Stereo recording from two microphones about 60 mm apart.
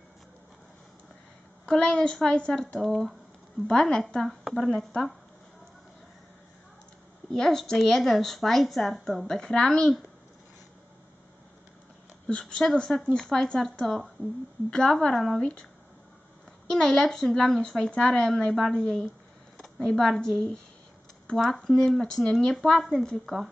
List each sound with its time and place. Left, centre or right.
1.7 s a woman's voice: centre
7.2 s a woman's voice: centre
12.3 s a woman's voice: centre
16.7 s a woman's voice: centre
21.6 s a woman's voice: centre